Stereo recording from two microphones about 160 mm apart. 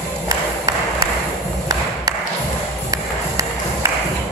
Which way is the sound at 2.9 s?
20° right (ahead or behind).